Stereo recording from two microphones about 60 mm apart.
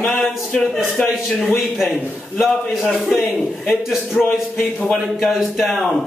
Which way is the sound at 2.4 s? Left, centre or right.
Centre.